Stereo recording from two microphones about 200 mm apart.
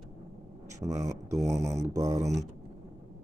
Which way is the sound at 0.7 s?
15° right (ahead or behind).